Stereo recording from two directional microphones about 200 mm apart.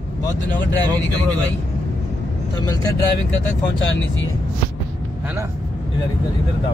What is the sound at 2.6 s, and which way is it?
Speech, 20° left (ahead or behind).